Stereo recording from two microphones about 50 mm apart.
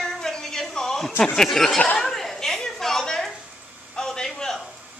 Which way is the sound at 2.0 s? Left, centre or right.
Centre.